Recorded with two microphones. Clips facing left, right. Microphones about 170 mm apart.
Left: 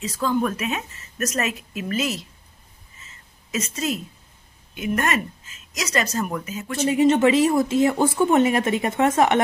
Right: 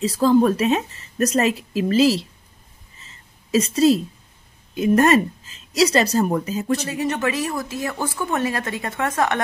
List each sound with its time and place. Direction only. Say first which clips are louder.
0.0 s speech: right 7 dB; 35° right (ahead or behind)
3.5 s speech: right 10 dB; 35° right (ahead or behind)
6.9 s speech: left 7 dB; 25° left (ahead or behind)